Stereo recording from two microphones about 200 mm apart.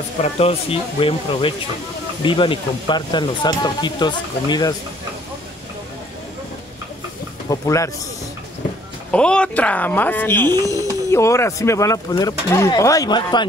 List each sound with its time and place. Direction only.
0.2 s speech: 30° left (ahead or behind)
7.4 s speech: 15° left (ahead or behind)
9.1 s speech: 5° left (ahead or behind); by 13.5 s 20° left (ahead or behind)